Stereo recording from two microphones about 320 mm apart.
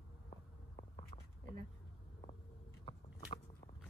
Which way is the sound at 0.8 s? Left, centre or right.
Centre.